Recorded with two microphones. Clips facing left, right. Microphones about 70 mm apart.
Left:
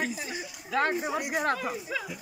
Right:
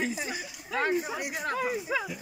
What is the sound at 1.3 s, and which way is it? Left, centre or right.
Speech, left.